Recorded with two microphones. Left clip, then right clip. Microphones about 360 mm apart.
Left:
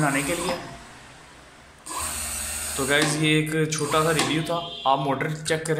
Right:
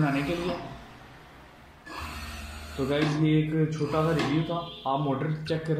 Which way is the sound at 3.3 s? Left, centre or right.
Left.